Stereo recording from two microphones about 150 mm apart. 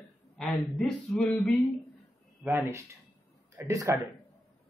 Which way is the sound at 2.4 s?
20° right (ahead or behind).